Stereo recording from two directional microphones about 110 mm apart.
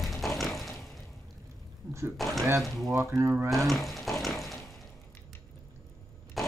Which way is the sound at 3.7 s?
Centre (ahead or behind).